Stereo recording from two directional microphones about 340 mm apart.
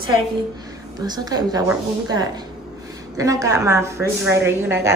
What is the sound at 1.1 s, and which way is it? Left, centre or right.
A woman's voice, centre.